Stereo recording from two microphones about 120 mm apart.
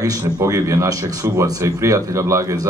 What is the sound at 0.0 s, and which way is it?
A man's voice, 30° right (ahead or behind).